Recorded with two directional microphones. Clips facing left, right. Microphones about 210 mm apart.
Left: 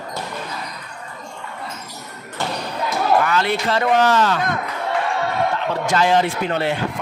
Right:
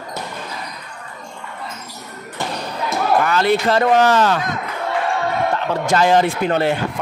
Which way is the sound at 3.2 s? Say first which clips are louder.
Right 4 dB; 40° right (ahead or behind).